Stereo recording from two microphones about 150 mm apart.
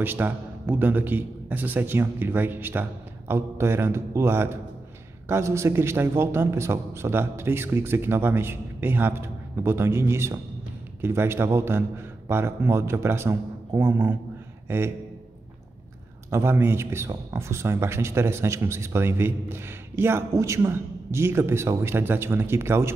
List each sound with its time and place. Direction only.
0.0 s speech: 15° right (ahead or behind)
16.3 s speech: 15° right (ahead or behind)